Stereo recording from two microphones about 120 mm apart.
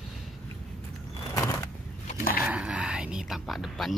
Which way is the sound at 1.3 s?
25° left (ahead or behind).